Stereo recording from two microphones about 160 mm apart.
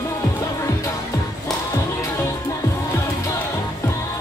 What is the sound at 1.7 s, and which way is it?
Music, 15° left (ahead or behind).